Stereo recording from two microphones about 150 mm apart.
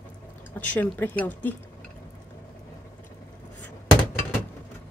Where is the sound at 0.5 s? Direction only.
10° left (ahead or behind).